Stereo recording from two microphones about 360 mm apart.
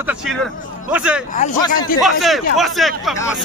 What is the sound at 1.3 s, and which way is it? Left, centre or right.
Speech, centre.